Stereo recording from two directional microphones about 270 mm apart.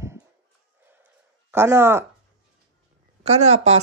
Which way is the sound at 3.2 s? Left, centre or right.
Right.